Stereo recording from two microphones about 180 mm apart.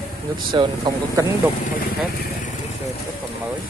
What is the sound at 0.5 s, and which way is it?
Speech, 25° right (ahead or behind).